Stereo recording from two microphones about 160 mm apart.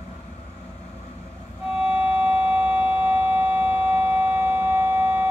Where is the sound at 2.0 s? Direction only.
10° right (ahead or behind).